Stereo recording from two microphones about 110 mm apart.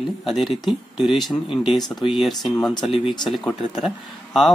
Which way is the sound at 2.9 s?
50° left (ahead or behind).